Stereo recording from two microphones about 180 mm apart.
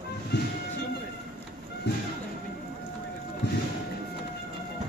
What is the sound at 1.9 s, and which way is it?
Music, 70° left (ahead or behind).